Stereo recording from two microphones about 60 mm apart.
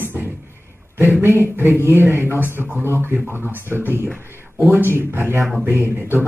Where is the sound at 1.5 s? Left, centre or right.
Right.